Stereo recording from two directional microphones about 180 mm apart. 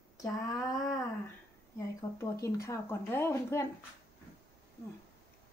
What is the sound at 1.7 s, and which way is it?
Speech, 15° left (ahead or behind).